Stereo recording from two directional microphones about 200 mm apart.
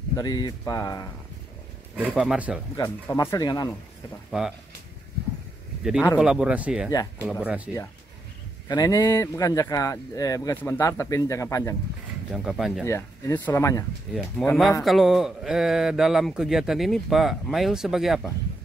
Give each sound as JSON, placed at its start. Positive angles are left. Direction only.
{"t": 0.1, "sound": "speech", "side_deg": 20}
{"t": 2.0, "sound": "speech", "side_deg": -5}
{"t": 2.8, "sound": "speech", "side_deg": 15}
{"t": 4.3, "sound": "speech", "side_deg": -5}
{"t": 6.1, "sound": "speech", "side_deg": -5}
{"t": 8.6, "sound": "speech", "side_deg": 20}
{"t": 12.3, "sound": "speech", "side_deg": 0}
{"t": 12.8, "sound": "speech", "side_deg": 15}
{"t": 14.4, "sound": "speech", "side_deg": 0}